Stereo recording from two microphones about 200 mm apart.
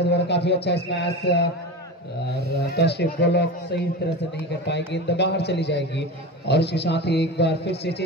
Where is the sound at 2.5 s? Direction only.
50° left (ahead or behind).